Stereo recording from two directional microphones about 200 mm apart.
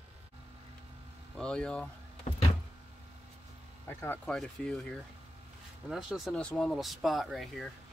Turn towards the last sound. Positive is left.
turn(degrees=0)  # may be behind; listen again after turning